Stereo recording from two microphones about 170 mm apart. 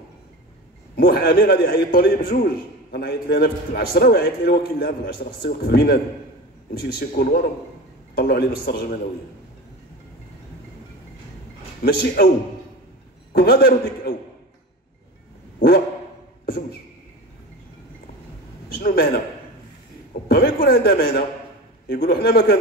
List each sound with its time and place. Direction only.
0.9 s a man's voice: 70° left (ahead or behind)
7.0 s a man's voice: 65° left (ahead or behind)
11.8 s speech: 75° left (ahead or behind)
13.3 s a man's voice: 70° left (ahead or behind)
18.8 s a man's voice: 65° left (ahead or behind)
20.2 s a man's voice: 80° left